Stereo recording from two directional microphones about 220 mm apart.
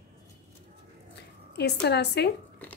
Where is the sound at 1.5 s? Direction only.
50° left (ahead or behind).